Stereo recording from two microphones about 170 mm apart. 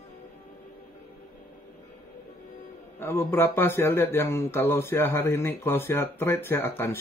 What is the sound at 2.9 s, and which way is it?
A man's voice, 15° left (ahead or behind).